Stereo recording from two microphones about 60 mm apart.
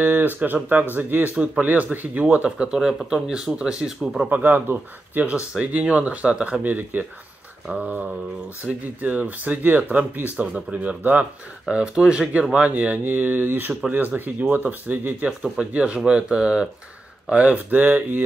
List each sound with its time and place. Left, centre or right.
0.0 s speech: right; by 4.3 s centre
4.3 s speech: right
6.6 s speech: right
11.7 s speech: centre
12.5 s speech: right
15.6 s speech: centre